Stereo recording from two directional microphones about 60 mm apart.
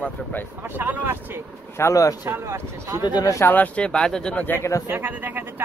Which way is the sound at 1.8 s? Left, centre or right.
Left.